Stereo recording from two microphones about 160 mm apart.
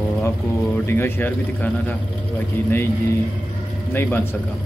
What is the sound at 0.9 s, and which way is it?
Speech, 15° left (ahead or behind).